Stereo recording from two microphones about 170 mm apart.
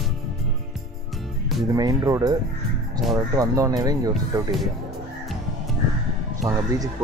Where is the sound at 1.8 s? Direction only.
20° right (ahead or behind).